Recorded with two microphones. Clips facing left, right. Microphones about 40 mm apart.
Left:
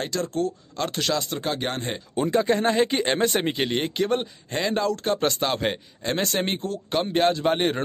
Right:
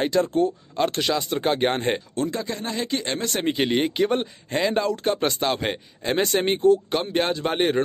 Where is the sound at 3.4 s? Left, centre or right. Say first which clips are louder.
Right 3 dB; centre.